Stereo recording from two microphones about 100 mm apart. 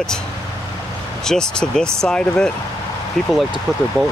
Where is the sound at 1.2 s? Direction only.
5° left (ahead or behind).